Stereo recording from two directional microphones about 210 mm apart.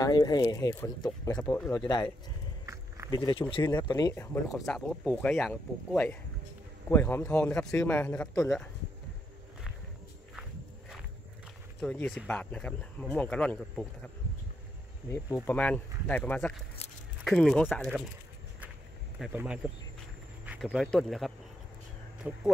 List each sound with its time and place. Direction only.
0.0 s speech: 20° left (ahead or behind)
2.6 s walk: 15° right (ahead or behind)
3.1 s speech: 20° left (ahead or behind); by 8.6 s 5° left (ahead or behind)
11.8 s speech: 5° left (ahead or behind)
19.1 s speech: 5° right (ahead or behind)
20.6 s speech: 5° left (ahead or behind)